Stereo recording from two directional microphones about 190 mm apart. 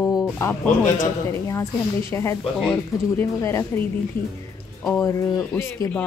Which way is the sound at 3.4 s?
15° left (ahead or behind).